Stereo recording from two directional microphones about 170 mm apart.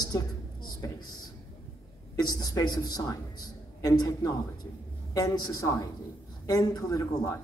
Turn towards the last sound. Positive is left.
turn(degrees=20)  # may be behind; listen again after turning